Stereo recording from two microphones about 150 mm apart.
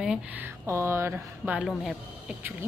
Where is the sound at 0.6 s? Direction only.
20° right (ahead or behind).